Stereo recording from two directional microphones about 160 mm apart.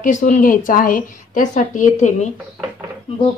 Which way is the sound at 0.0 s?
55° left (ahead or behind).